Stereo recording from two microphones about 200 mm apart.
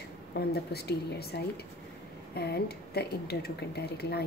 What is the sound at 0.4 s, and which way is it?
Speech, 55° left (ahead or behind).